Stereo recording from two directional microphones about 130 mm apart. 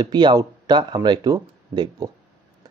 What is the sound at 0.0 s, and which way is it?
Speech, 35° right (ahead or behind).